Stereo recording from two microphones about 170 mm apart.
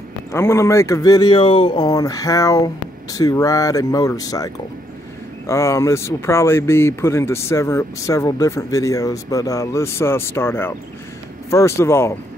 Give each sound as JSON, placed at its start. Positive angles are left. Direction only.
{"t": 0.3, "sound": "speech", "side_deg": 15}
{"t": 5.5, "sound": "speech", "side_deg": 15}